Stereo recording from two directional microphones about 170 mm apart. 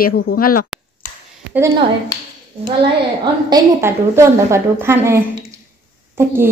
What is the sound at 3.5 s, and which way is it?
A woman's voice, 20° right (ahead or behind).